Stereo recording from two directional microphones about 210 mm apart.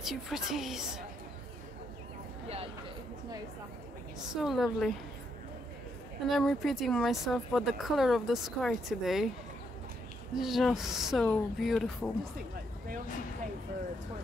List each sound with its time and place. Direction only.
0.0 s speech: centre (ahead or behind)
2.4 s speech: 30° right (ahead or behind)
4.4 s speech: centre (ahead or behind)
6.2 s speech: centre (ahead or behind)
10.3 s speech: centre (ahead or behind)